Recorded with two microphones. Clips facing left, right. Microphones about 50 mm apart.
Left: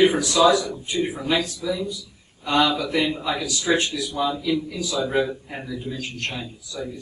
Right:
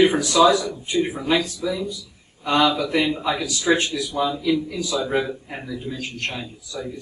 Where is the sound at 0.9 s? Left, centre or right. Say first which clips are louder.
Right 3 dB; centre.